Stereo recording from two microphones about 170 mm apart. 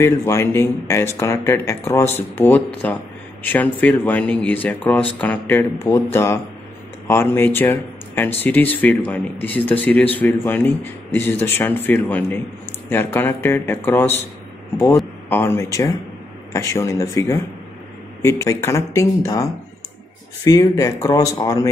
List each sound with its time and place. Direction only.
0.0 s speech: 15° left (ahead or behind)
15.2 s speech: 15° left (ahead or behind)